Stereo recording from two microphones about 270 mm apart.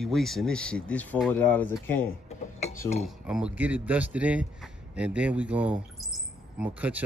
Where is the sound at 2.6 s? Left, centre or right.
Left.